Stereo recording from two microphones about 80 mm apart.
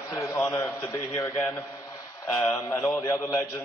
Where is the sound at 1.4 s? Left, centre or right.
Left.